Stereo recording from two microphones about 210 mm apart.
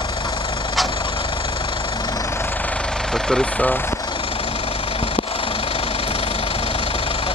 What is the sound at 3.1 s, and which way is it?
Speech, 5° left (ahead or behind).